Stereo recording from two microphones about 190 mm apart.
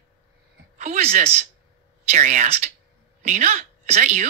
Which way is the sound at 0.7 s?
35° right (ahead or behind).